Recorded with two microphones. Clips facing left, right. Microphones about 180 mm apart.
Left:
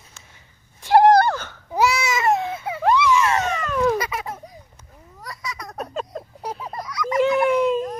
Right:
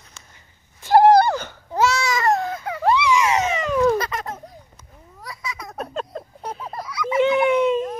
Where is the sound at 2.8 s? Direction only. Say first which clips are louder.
Even; 15° right (ahead or behind).